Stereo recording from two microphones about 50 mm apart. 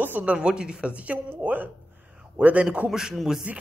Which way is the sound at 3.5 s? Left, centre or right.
Right.